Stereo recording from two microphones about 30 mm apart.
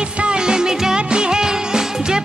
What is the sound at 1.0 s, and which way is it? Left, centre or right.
Music, right.